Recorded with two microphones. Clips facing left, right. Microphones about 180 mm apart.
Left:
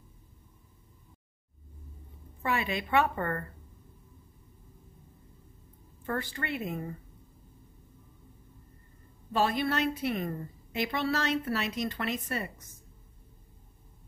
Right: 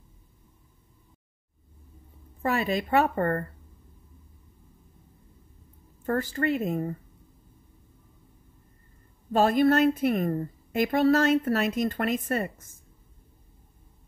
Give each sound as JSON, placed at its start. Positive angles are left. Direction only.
{"t": 2.4, "sound": "a woman's voice", "side_deg": -40}
{"t": 6.0, "sound": "a woman's voice", "side_deg": -45}
{"t": 9.3, "sound": "a woman's voice", "side_deg": -45}